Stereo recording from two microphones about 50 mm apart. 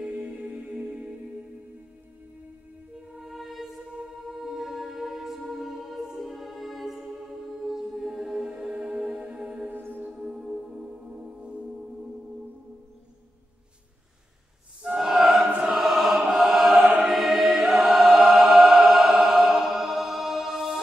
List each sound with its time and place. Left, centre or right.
0.0 s music: right
3.3 s music: centre
7.6 s choir: centre
8.9 s music: right
9.7 s music: right
10.2 s music: centre
11.1 s music: right
15.0 s choir: centre
16.3 s chant: centre
17.0 s choir: centre
18.7 s music: centre